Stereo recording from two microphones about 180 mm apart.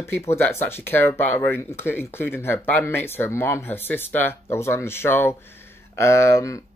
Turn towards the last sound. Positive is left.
turn(degrees=15)  # may be behind; listen again after turning